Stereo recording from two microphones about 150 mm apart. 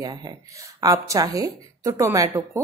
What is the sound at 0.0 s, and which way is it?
Speech, 25° right (ahead or behind).